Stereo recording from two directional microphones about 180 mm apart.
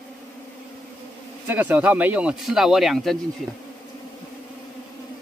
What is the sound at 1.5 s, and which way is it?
Speech, 10° right (ahead or behind).